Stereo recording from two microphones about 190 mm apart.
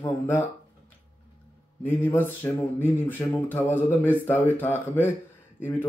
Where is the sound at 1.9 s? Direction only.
10° left (ahead or behind).